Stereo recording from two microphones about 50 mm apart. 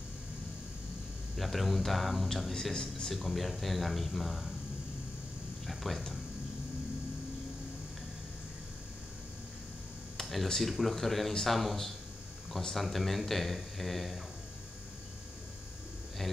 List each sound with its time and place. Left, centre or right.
1.3 s a man's voice: centre
2.7 s speech: centre
3.1 s a man's voice: centre
5.7 s speech: centre
10.1 s a man's voice: centre